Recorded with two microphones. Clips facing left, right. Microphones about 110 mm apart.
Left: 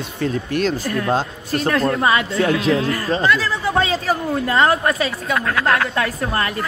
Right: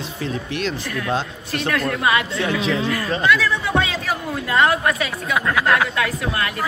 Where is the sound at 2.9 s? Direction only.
35° left (ahead or behind).